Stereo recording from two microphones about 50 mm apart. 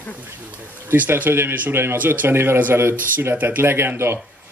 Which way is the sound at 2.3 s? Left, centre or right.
Right.